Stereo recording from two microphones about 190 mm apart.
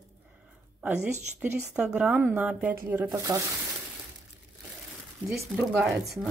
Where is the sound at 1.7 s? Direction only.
5° right (ahead or behind).